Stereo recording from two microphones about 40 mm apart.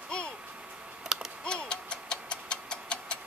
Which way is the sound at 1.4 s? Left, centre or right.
Left.